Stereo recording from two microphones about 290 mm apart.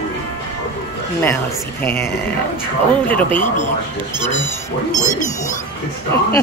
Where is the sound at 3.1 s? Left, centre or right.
Centre.